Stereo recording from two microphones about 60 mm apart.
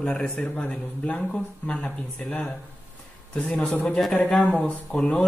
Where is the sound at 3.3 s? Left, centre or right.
Centre.